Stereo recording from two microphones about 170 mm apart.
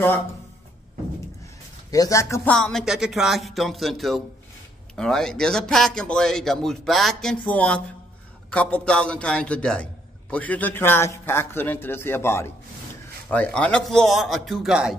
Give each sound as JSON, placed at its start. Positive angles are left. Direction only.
{"t": 1.9, "sound": "a man's voice", "side_deg": 20}
{"t": 2.5, "sound": "a man's voice", "side_deg": 5}